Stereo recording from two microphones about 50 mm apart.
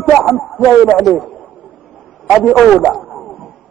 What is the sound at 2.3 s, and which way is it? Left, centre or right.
Speech, centre.